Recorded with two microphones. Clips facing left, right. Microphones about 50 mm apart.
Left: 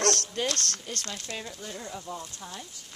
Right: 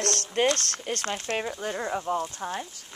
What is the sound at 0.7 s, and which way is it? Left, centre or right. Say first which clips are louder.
Speech: right 7 dB; right.